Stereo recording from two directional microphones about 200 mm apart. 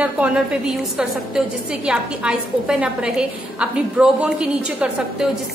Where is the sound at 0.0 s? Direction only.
5° right (ahead or behind).